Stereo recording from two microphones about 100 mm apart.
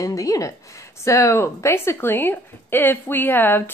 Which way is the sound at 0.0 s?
35° left (ahead or behind).